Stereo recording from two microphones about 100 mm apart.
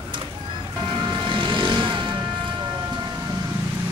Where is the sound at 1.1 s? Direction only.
55° right (ahead or behind).